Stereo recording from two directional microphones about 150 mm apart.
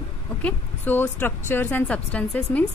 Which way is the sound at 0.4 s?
10° left (ahead or behind).